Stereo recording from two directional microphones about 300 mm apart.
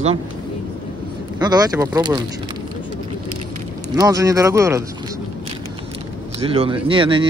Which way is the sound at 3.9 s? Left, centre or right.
Centre.